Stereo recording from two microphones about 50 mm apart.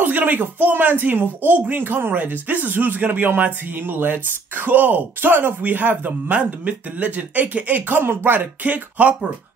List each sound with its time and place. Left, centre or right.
0.0 s speech: right
8.0 s speech: right
8.6 s speech: right